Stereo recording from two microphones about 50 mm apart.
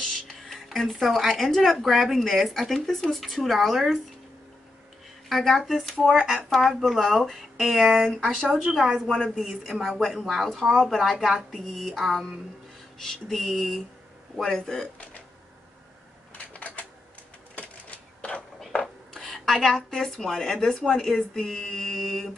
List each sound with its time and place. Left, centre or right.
0.0 s speech: centre
5.3 s speech: centre
16.5 s a sound: left
19.1 s speech: centre
20.8 s speech: centre